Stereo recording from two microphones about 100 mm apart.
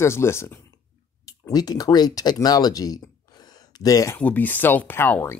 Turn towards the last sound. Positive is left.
turn(degrees=20)  # may be behind; listen again after turning